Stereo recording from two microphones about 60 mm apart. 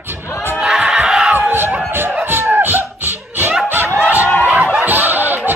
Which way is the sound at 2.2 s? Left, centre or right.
Right.